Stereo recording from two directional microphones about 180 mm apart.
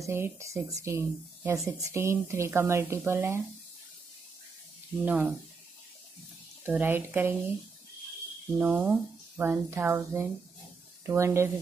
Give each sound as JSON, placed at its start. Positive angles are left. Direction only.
{"t": 0.0, "sound": "speech", "side_deg": -15}
{"t": 5.0, "sound": "speech", "side_deg": -10}
{"t": 6.6, "sound": "speech", "side_deg": -10}
{"t": 8.5, "sound": "speech", "side_deg": -10}